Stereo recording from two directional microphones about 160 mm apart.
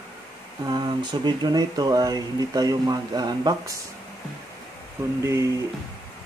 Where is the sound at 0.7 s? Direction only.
30° right (ahead or behind).